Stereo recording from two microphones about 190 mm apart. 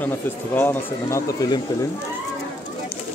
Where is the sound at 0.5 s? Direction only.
15° left (ahead or behind).